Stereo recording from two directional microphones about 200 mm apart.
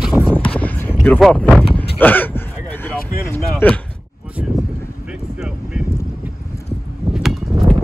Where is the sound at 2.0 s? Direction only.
10° left (ahead or behind).